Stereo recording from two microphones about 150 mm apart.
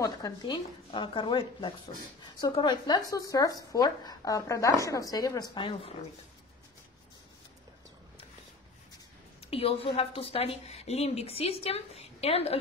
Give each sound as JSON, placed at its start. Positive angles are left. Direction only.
{"t": 0.0, "sound": "a woman's voice", "side_deg": 25}
{"t": 9.5, "sound": "a woman's voice", "side_deg": 40}